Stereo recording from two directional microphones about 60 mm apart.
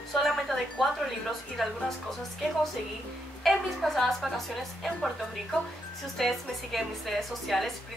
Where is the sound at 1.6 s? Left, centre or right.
Centre.